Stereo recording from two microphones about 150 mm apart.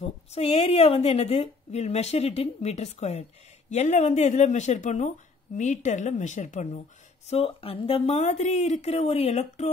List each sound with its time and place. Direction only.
0.3 s a woman's voice: 45° left (ahead or behind)
7.2 s a woman's voice: 40° left (ahead or behind)